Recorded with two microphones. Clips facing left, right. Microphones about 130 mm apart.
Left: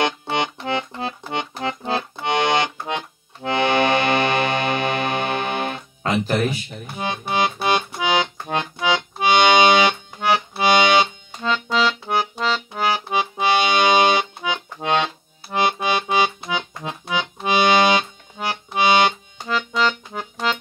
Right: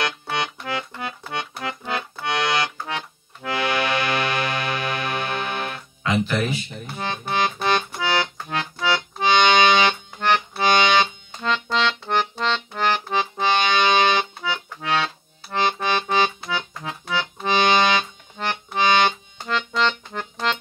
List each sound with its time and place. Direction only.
0.0 s music: 25° left (ahead or behind)
0.6 s accordion: 25° left (ahead or behind)
6.0 s speech: 40° left (ahead or behind)
7.0 s accordion: 15° left (ahead or behind)
15.5 s music: 15° left (ahead or behind)